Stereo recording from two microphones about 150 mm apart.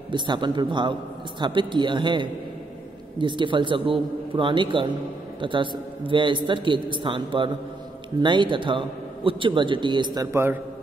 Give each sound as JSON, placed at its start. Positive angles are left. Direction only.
{"t": 0.1, "sound": "a man's voice", "side_deg": -30}
{"t": 10.3, "sound": "a man's voice", "side_deg": -15}